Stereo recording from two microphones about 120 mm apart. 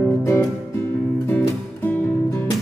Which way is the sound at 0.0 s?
20° left (ahead or behind).